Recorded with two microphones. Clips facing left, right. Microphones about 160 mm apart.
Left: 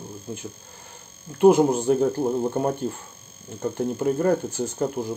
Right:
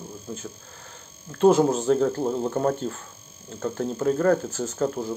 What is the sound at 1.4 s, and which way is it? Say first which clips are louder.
Speech: left 2 dB; 10° left (ahead or behind).